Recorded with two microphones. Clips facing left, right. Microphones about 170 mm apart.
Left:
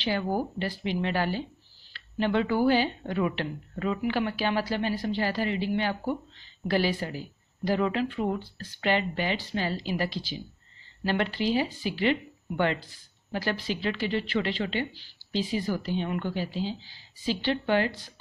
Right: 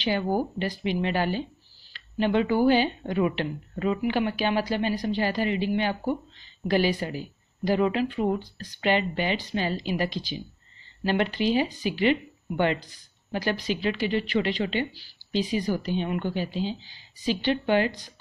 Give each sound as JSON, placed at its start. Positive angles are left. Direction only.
{"t": 0.0, "sound": "speech", "side_deg": -15}